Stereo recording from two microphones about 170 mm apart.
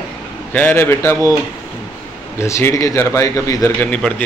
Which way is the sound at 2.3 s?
15° left (ahead or behind).